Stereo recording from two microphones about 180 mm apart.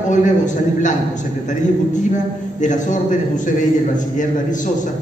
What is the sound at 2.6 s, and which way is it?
Speech, 45° left (ahead or behind).